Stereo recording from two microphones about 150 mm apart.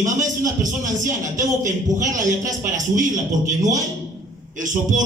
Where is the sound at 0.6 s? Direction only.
60° right (ahead or behind).